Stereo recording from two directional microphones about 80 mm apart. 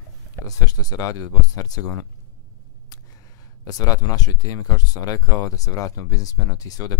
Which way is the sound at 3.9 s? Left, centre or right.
Left.